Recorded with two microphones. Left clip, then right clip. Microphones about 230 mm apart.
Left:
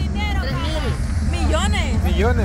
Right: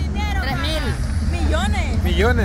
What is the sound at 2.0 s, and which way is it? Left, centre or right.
Speech, centre.